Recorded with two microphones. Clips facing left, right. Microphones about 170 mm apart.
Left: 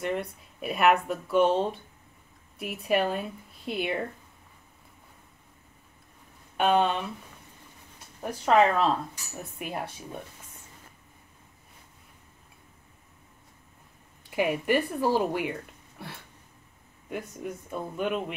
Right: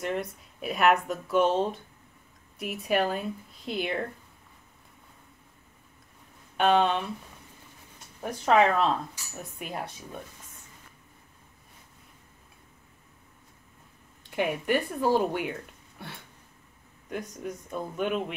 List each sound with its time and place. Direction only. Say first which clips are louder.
0.0 s speech: left 1 dB; centre (ahead or behind)
6.5 s speech: right 1 dB; centre (ahead or behind)
8.2 s speech: even; centre (ahead or behind)
14.3 s speech: left 2 dB; 5° left (ahead or behind)
17.1 s speech: even; 5° left (ahead or behind)